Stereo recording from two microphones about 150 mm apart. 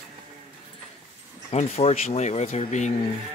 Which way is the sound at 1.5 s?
45° left (ahead or behind).